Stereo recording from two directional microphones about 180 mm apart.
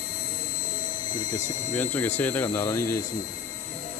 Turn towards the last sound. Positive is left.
turn(degrees=15)  # may be behind; listen again after turning